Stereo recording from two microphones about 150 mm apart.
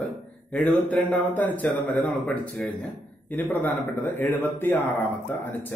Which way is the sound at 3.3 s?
15° left (ahead or behind).